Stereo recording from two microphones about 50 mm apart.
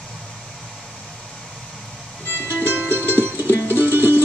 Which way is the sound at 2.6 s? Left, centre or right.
Right.